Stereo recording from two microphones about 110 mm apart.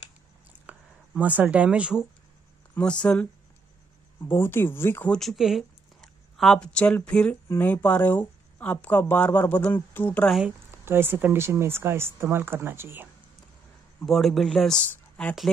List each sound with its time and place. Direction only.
0.5 s a sound: 15° right (ahead or behind)
2.7 s speech: 10° left (ahead or behind)
4.2 s speech: 20° left (ahead or behind)
5.1 s speech: centre (ahead or behind); by 10.2 s 20° left (ahead or behind)
10.9 s speech: 20° right (ahead or behind)
14.0 s speech: centre (ahead or behind)